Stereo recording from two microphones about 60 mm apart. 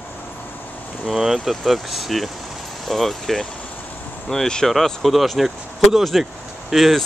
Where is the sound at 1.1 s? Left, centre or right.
Centre.